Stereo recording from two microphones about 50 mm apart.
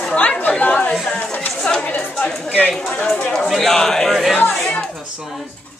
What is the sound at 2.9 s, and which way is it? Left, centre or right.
Speech, centre.